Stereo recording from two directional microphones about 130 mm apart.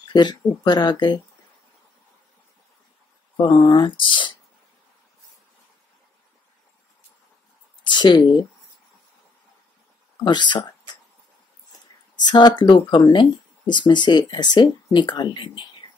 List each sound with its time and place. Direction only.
0.1 s speech: 35° left (ahead or behind)
3.3 s speech: 35° left (ahead or behind)
7.8 s speech: 35° left (ahead or behind)
10.2 s speech: 35° left (ahead or behind)
12.3 s speech: 35° left (ahead or behind)